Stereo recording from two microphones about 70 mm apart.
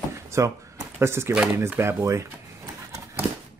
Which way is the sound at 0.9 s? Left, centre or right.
Right.